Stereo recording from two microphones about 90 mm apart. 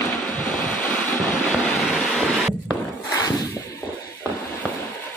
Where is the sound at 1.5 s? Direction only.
5° left (ahead or behind).